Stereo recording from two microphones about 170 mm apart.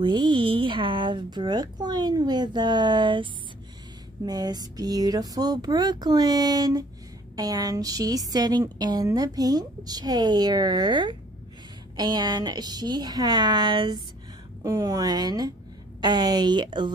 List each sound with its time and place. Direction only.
0.0 s a woman's voice: 25° right (ahead or behind)
4.3 s a woman's voice: 25° right (ahead or behind)